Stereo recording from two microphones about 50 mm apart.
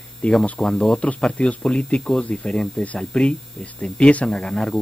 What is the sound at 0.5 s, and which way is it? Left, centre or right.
Speech, centre.